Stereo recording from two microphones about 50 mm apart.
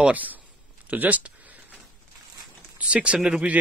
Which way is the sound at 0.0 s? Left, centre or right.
Right.